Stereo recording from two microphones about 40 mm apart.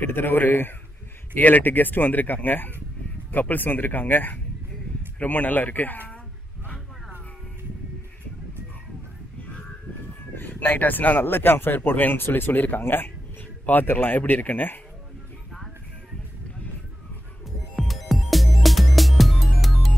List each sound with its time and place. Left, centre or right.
0.0 s speech: left
1.3 s speech: left
10.6 s speech: left
12.2 s speech: left
17.7 s music: centre